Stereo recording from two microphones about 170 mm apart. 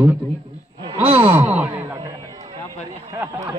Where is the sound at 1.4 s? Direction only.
15° right (ahead or behind).